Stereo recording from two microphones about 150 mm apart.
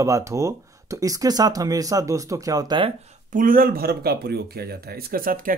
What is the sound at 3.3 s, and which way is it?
Speech, 70° right (ahead or behind).